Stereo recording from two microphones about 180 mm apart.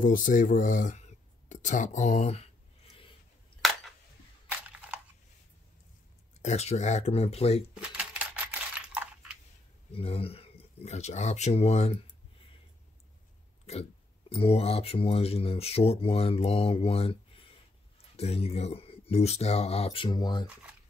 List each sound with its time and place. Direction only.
0.0 s speech: 45° left (ahead or behind)
4.5 s crushing: 5° right (ahead or behind)
6.4 s speech: 35° left (ahead or behind)
7.7 s coin: 5° right (ahead or behind)
9.9 s speech: 30° left (ahead or behind)
14.3 s speech: 35° left (ahead or behind)